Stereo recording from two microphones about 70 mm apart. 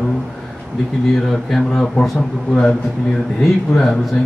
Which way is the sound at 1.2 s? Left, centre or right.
Centre.